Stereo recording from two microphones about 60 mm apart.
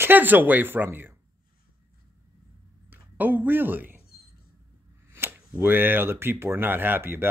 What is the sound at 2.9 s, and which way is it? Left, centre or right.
Speech, right.